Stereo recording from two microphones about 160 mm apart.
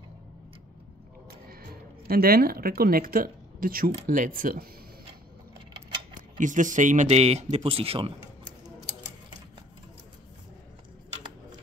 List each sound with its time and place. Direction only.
1.5 s speech: 70° right (ahead or behind)
6.1 s speech: 55° right (ahead or behind); by 8.1 s 35° right (ahead or behind)